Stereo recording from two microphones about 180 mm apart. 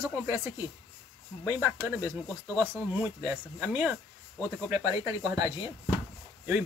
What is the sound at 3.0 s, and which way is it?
Speech, 15° right (ahead or behind).